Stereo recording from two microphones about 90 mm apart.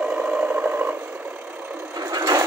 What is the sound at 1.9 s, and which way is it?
Sewing machine, 45° right (ahead or behind).